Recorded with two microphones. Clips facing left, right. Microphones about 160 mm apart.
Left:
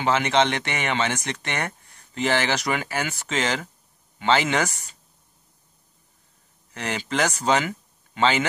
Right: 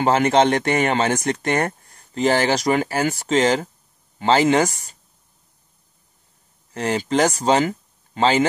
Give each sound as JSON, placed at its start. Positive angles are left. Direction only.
{"t": 0.0, "sound": "speech", "side_deg": -40}
{"t": 6.7, "sound": "speech", "side_deg": -30}